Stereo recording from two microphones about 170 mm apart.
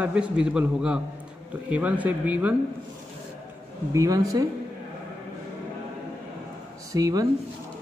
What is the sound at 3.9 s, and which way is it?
Speech, 20° right (ahead or behind).